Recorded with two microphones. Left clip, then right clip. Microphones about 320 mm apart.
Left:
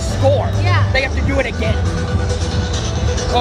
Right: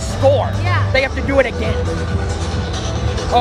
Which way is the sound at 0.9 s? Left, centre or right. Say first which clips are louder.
Right 6 dB; right.